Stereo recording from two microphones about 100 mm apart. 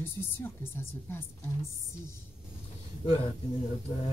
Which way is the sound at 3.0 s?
90° left.